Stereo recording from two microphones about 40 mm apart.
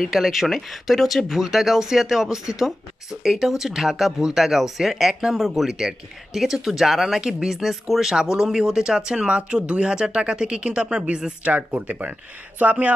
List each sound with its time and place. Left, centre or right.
0.1 s speech: centre
11.4 s speech: right